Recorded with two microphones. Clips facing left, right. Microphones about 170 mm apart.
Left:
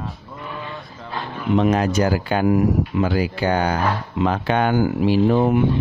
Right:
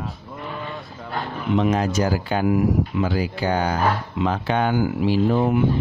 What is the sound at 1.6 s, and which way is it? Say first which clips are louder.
Speech: left 3 dB; 60° left (ahead or behind).